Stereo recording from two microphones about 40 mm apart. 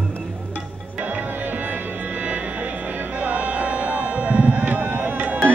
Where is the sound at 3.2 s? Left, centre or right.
Right.